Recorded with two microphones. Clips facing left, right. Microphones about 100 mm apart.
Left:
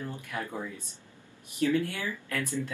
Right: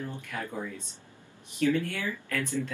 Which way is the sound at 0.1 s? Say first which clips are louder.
Even; 15° left (ahead or behind).